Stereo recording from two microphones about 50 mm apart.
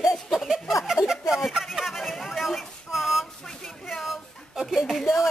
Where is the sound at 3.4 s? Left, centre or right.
Centre.